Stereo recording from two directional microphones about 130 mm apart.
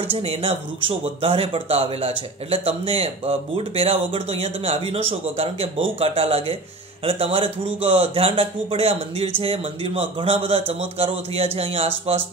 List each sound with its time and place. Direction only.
0.0 s speech: 50° right (ahead or behind)